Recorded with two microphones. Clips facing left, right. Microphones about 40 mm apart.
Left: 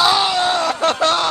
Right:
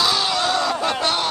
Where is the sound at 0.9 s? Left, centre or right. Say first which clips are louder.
Left 5 dB; left.